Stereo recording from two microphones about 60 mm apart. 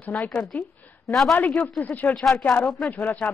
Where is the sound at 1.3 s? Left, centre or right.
Left.